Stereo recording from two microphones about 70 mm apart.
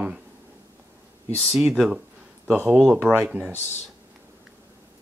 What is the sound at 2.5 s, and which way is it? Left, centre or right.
Speech, right.